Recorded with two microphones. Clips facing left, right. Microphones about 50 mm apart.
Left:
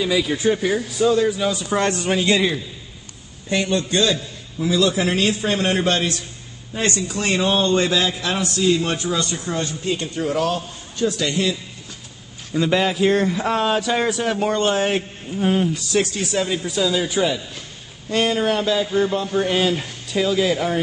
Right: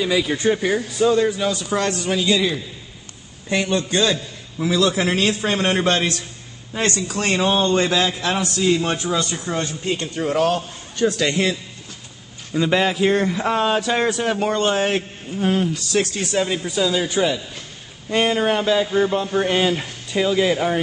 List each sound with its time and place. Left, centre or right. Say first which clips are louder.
0.0 s a man's voice: even; centre
1.5 s speech: even; centre
1.8 s speech: left 3 dB; left
3.4 s a man's voice: even; right
7.3 s a man's voice: even; right
10.3 s a man's voice: right 5 dB; right
12.5 s a man's voice: even; centre
16.3 s a man's voice: right 1 dB; centre
18.1 s speech: right 1 dB; centre